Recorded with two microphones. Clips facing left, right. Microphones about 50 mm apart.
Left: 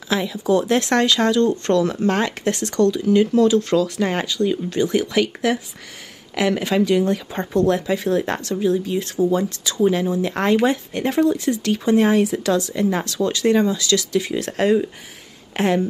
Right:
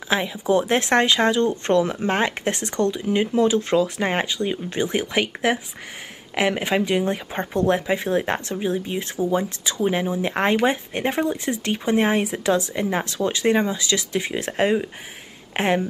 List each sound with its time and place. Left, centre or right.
0.1 s speech: right